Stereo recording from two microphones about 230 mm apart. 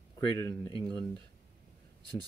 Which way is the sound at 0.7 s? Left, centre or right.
Centre.